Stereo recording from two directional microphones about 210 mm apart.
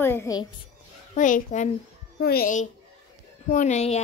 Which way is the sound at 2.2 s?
45° left (ahead or behind).